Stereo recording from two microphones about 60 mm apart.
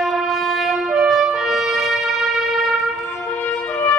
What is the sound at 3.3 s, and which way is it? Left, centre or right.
Music, left.